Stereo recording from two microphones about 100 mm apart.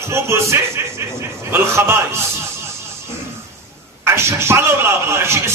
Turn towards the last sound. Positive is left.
turn(degrees=-25)  # may be behind; listen again after turning